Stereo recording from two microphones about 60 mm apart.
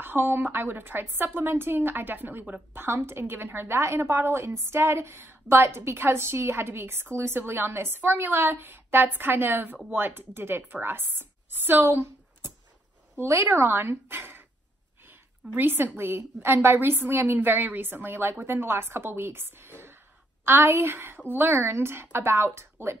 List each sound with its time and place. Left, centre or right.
0.0 s a woman's voice: right